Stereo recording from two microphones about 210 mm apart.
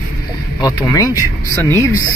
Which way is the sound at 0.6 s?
20° left (ahead or behind).